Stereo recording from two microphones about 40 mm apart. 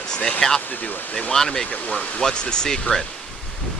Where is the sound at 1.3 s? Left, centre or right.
Centre.